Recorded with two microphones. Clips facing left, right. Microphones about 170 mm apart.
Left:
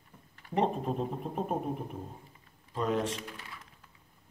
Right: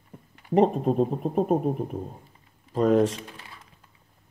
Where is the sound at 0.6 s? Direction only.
40° right (ahead or behind).